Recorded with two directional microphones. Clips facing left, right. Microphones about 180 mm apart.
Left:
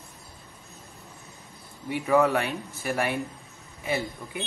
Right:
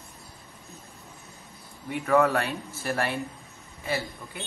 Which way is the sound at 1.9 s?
15° left (ahead or behind).